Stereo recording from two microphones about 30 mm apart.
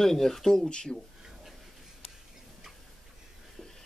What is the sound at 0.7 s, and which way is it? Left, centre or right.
Speech, left.